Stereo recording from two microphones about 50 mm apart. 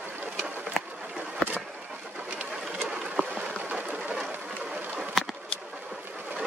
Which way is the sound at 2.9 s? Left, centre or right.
Centre.